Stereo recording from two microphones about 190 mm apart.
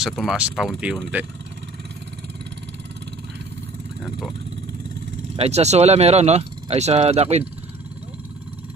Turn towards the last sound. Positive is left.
turn(degrees=-35)  # may be behind; listen again after turning